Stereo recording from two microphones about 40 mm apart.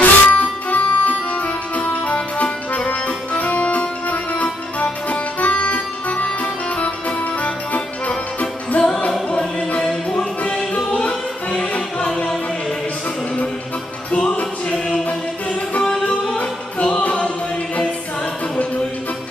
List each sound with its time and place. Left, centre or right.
0.0 s music: left
9.3 s music: left
14.1 s music: left
16.1 s singing: left